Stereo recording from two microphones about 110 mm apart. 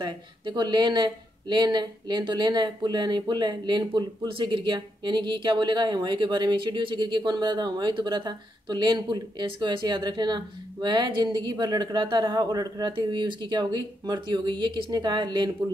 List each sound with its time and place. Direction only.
0.0 s speech: 40° right (ahead or behind)